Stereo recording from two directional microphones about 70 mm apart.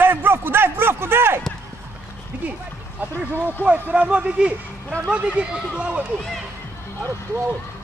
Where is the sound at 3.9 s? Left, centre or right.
Centre.